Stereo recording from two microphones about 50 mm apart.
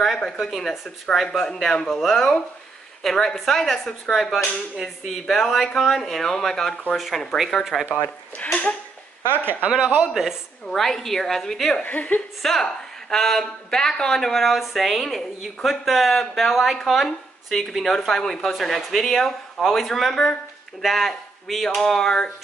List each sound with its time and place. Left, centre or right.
0.0 s speech: centre
1.9 s speech: centre
9.3 s a woman's voice: right
9.7 s speech: right
10.7 s speech: centre
11.8 s speech: left
12.4 s speech: centre